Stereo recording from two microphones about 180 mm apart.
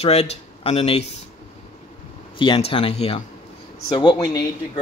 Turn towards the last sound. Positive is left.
turn(degrees=25)  # may be behind; listen again after turning